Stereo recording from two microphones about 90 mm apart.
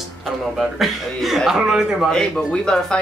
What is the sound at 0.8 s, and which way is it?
Speech, centre (ahead or behind).